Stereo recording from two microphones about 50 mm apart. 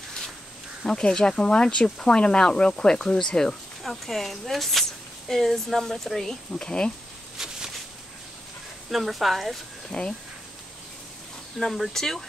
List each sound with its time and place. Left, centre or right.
0.8 s speech: centre
3.8 s speech: centre
7.3 s a sound: centre
8.9 s speech: centre
11.5 s speech: centre